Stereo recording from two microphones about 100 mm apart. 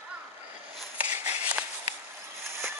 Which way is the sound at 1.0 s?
15° right (ahead or behind).